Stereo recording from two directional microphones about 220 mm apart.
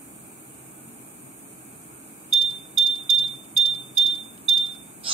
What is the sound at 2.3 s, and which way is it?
Smoke detector, 25° right (ahead or behind).